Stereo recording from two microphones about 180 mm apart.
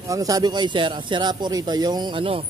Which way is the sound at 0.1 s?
20° right (ahead or behind).